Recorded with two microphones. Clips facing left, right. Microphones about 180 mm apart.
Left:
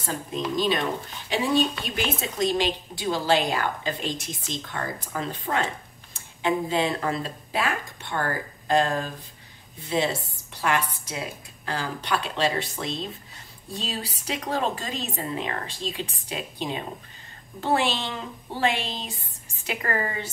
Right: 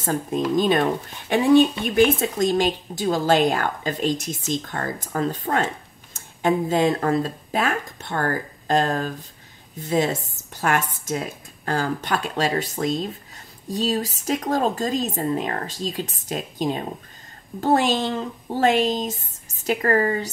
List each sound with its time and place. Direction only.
0.0 s a woman's voice: 50° right (ahead or behind)